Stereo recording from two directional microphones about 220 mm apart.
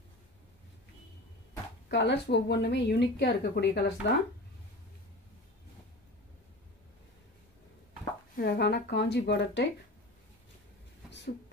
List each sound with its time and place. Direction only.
1.9 s speech: 50° left (ahead or behind)
8.4 s speech: 45° left (ahead or behind)